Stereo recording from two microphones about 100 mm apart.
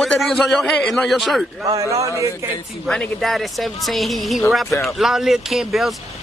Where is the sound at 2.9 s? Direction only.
5° left (ahead or behind).